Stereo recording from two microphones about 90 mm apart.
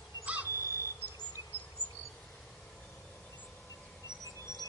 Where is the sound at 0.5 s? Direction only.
35° left (ahead or behind).